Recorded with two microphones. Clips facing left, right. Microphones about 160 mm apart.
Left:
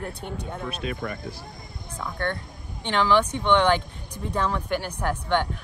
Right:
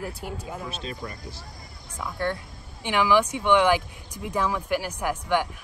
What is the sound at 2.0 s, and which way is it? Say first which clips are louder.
A woman's voice: right 1 dB; 5° right (ahead or behind).